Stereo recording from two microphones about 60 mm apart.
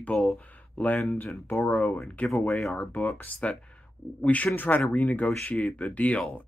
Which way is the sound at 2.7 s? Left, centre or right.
Left.